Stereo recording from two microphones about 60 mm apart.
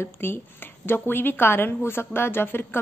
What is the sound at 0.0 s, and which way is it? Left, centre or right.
A woman's voice, left.